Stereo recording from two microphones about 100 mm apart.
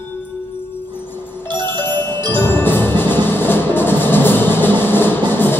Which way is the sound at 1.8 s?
25° left (ahead or behind).